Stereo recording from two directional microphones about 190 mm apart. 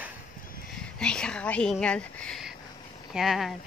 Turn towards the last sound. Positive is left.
turn(degrees=0)  # may be behind; listen again after turning